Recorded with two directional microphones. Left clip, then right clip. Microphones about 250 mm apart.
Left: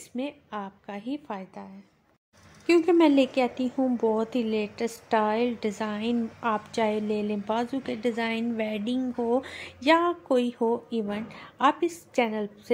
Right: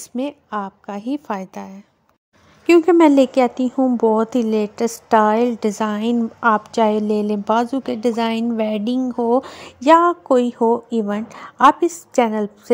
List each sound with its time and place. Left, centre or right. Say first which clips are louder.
0.1 s a woman's voice: right 9 dB; right